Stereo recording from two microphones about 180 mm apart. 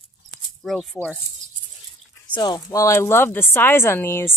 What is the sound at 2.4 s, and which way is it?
Speech, 20° left (ahead or behind).